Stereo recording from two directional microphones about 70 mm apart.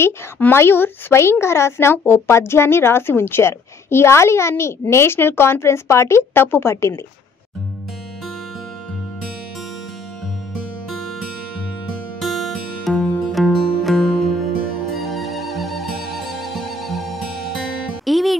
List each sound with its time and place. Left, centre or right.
0.4 s a woman's voice: left
10.9 s music: centre